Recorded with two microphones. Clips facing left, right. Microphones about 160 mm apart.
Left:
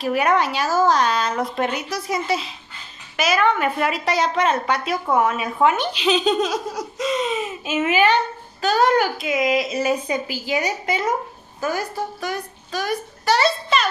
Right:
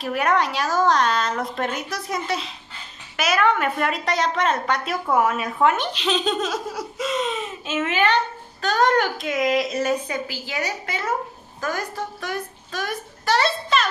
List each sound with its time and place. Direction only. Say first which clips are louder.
0.0 s a woman's voice: left 2 dB; centre (ahead or behind)
10.0 s a woman's voice: left 4 dB; 15° left (ahead or behind)
11.6 s a woman's voice: left 3 dB; 5° left (ahead or behind)